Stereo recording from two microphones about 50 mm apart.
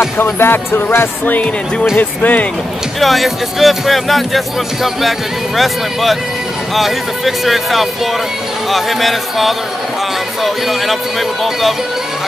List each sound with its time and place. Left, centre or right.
0.2 s speech: left
3.0 s speech: centre
5.6 s speech: centre